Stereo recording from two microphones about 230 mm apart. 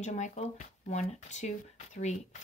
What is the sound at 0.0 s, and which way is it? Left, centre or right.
Speech, left.